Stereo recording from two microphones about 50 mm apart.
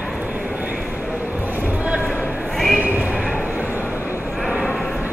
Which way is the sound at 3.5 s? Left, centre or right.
Right.